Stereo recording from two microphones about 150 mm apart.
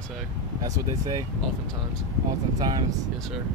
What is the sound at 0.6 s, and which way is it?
Speech, 25° right (ahead or behind).